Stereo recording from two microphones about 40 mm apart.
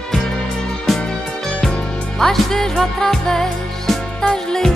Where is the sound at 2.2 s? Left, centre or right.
Centre.